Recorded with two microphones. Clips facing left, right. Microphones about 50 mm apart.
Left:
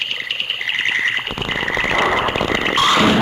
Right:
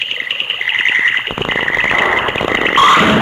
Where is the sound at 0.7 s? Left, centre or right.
Right.